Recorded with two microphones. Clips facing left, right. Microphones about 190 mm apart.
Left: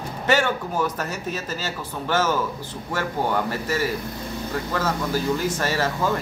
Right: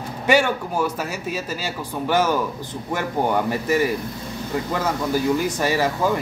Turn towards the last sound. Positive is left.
turn(degrees=-15)  # may be behind; listen again after turning